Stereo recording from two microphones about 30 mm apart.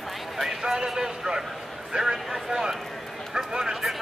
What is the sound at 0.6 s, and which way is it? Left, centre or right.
Speech, centre.